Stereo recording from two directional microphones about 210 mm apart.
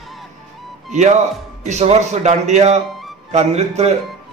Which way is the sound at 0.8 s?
35° right (ahead or behind).